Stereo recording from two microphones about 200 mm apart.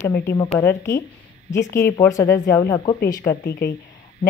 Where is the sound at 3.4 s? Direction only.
55° left (ahead or behind).